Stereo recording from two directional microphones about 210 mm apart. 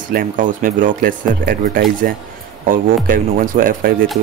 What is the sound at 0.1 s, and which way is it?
Speech, 40° right (ahead or behind).